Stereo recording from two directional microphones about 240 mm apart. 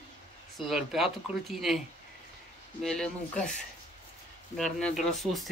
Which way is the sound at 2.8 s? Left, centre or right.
Centre.